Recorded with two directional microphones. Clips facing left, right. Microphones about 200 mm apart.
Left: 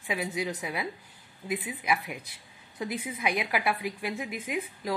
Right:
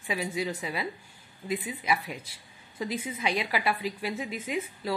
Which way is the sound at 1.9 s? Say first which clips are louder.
Even; 10° left (ahead or behind).